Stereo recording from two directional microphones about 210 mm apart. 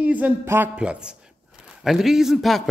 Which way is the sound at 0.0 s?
5° right (ahead or behind).